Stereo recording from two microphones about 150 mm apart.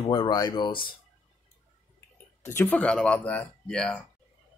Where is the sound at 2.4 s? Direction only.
15° left (ahead or behind).